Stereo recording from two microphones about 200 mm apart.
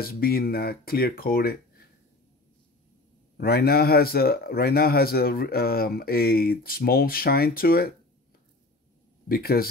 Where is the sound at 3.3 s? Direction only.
50° left (ahead or behind).